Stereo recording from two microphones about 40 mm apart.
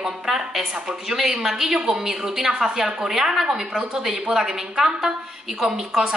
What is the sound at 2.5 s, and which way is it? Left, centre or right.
Speech, right.